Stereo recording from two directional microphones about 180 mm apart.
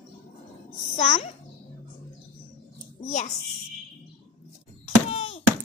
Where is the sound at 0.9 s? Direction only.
35° left (ahead or behind).